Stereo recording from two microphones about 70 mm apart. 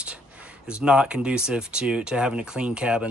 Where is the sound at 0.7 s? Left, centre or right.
Centre.